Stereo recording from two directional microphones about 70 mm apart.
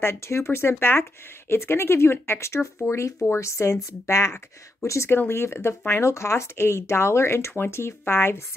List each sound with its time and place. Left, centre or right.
0.0 s speech: left